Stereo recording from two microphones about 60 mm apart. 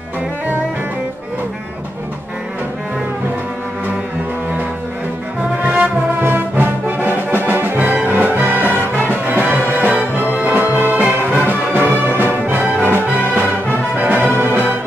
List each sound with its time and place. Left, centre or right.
5.6 s music: right
13.9 s music: right